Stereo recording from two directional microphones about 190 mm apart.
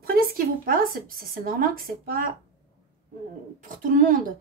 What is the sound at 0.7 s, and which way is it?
Speech, 50° right (ahead or behind).